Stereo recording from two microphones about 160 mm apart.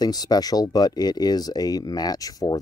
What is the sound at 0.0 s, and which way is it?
Speech, 25° left (ahead or behind).